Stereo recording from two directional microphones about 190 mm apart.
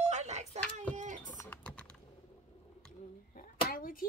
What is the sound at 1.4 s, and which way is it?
Typing, 5° left (ahead or behind).